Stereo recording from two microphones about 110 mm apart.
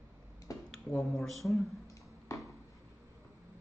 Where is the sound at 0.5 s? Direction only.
30° left (ahead or behind).